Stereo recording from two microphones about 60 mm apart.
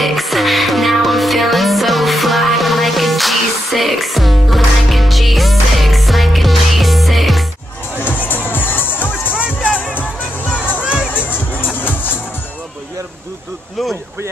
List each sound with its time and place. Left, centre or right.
0.0 s music: centre
8.0 s music: left
10.8 s music: centre
11.2 s music: left